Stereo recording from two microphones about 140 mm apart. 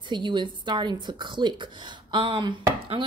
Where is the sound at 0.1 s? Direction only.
35° right (ahead or behind).